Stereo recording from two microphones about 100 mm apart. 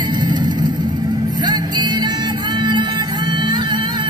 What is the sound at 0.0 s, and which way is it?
Vehicle, 45° right (ahead or behind).